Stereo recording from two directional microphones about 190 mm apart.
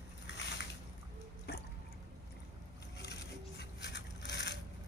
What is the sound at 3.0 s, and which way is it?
Crushing, 60° left (ahead or behind).